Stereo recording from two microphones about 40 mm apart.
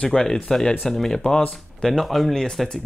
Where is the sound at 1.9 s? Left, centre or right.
Centre.